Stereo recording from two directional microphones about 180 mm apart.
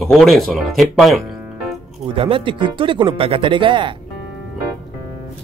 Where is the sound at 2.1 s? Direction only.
30° right (ahead or behind).